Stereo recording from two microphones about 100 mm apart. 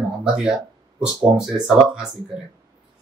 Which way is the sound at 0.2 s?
10° right (ahead or behind).